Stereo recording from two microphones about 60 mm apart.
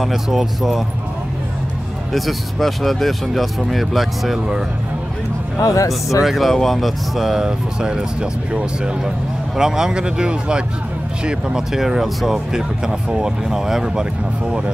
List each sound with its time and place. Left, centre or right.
0.0 s speech: centre
2.1 s speech: centre
5.6 s speech: left
6.2 s speech: centre